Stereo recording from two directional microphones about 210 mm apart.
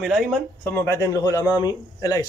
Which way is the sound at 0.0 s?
Centre (ahead or behind).